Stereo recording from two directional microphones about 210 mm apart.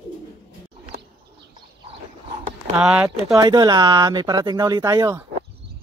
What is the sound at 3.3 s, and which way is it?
Speech, 20° right (ahead or behind).